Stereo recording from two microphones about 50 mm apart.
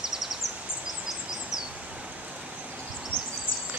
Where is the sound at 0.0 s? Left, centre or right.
Centre.